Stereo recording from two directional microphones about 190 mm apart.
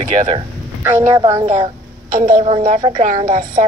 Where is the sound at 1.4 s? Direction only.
35° right (ahead or behind).